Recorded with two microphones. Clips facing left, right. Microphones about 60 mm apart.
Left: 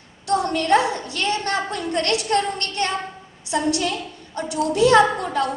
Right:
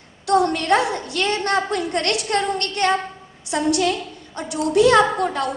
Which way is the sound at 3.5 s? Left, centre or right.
Right.